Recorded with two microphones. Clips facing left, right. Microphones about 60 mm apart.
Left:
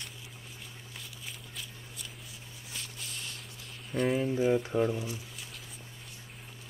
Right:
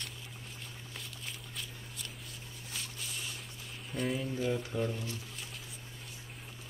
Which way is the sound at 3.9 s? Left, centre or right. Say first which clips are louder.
Left 6 dB; centre.